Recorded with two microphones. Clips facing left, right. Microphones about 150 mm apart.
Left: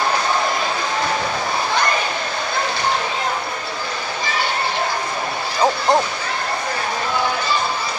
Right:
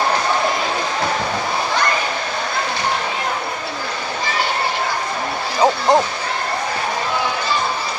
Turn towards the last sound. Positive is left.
turn(degrees=-15)  # may be behind; listen again after turning